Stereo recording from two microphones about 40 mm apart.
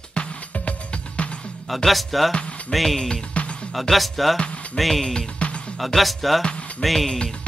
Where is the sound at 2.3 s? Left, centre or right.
Left.